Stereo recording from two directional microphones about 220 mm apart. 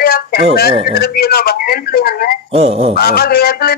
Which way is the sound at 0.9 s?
45° left (ahead or behind).